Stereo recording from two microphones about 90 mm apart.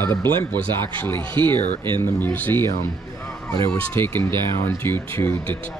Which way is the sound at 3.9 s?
25° left (ahead or behind).